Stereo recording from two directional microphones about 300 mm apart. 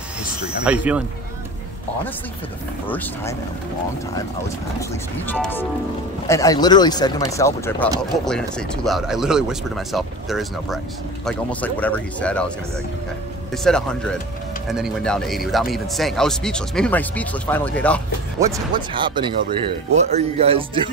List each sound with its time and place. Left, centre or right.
0.7 s speech: centre
2.9 s speech: centre
4.7 s speech: centre
18.4 s speech: centre